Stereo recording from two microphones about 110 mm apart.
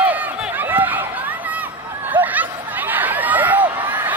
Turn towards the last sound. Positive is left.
turn(degrees=-15)  # may be behind; listen again after turning